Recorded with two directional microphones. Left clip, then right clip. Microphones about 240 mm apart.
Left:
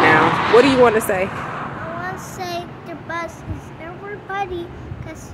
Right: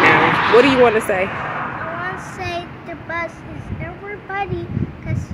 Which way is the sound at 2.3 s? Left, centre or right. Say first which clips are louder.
Right 1 dB; centre.